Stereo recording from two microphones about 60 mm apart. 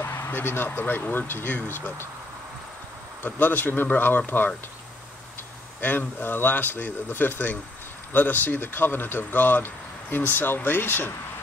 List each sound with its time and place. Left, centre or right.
0.3 s speech: left
3.3 s speech: left
5.8 s speech: left